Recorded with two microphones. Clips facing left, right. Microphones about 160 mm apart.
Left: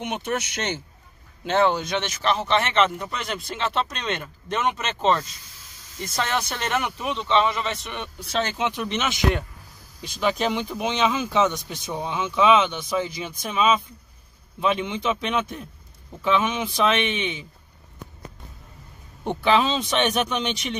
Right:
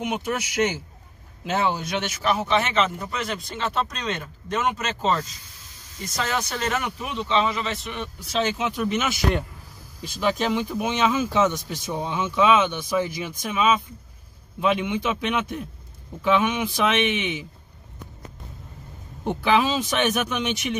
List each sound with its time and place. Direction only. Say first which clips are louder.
0.0 s speech: right 1 dB; 10° right (ahead or behind)
10.1 s a man's voice: even; 15° left (ahead or behind)
14.6 s speech: right 1 dB; 15° right (ahead or behind)
19.2 s speech: even; 5° right (ahead or behind)
20.0 s speech: left 2 dB; 30° left (ahead or behind)